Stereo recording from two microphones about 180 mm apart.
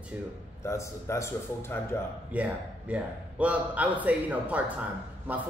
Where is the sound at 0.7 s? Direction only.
15° left (ahead or behind).